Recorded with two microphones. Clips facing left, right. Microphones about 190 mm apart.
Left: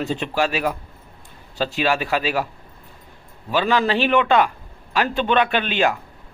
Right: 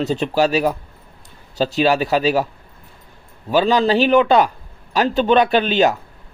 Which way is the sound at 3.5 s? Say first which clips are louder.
Right 4 dB; 35° right (ahead or behind).